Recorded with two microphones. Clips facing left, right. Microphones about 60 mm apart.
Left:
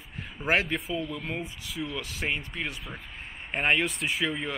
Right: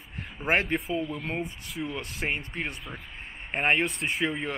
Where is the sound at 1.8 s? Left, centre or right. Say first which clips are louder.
Right 1 dB; centre.